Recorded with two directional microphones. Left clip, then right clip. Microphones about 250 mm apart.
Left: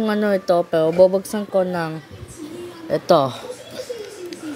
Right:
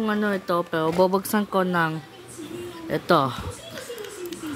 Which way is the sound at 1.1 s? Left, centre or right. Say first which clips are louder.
Left 3 dB; centre.